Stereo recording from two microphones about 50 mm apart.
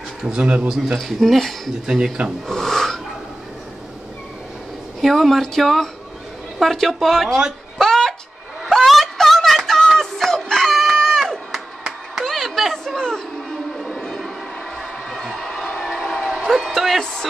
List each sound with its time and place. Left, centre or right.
0.2 s speech: centre
1.0 s a woman's voice: centre
2.4 s a sound: centre
5.0 s a woman's voice: centre
7.8 s a sound: centre
11.5 s crowd: centre
12.3 s chatter: centre
13.5 s music: centre
14.8 s crowd: centre
15.6 s train: centre
16.2 s a sound: centre
17.0 s a sound: centre